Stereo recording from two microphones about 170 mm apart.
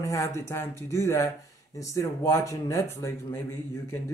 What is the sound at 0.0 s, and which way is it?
Speech, 15° left (ahead or behind).